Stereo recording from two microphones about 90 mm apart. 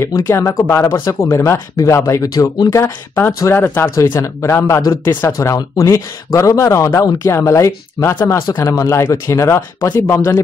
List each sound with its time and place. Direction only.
0.3 s speech: 35° left (ahead or behind)
3.9 s speech: 30° left (ahead or behind)